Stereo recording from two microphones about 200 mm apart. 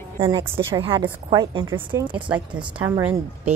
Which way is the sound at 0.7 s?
25° right (ahead or behind).